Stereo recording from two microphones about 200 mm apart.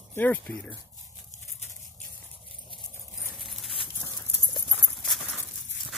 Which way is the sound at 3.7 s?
20° left (ahead or behind).